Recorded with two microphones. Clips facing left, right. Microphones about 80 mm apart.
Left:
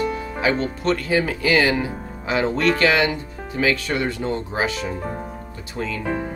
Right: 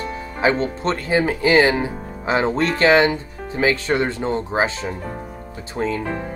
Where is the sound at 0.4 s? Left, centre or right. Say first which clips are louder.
Right 4 dB; right.